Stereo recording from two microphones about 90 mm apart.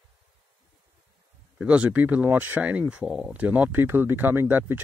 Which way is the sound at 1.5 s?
15° right (ahead or behind).